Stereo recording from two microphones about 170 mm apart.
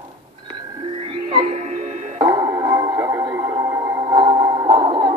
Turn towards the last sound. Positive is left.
turn(degrees=-30)  # may be behind; listen again after turning